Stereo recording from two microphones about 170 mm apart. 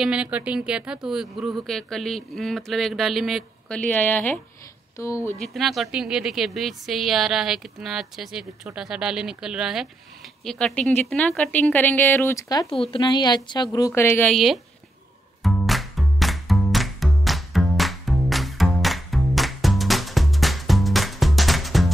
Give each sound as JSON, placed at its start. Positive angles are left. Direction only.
{"t": 0.0, "sound": "a woman's voice", "side_deg": -5}
{"t": 5.4, "sound": "a woman's voice", "side_deg": 0}
{"t": 14.3, "sound": "speech", "side_deg": 0}
{"t": 15.4, "sound": "music", "side_deg": 0}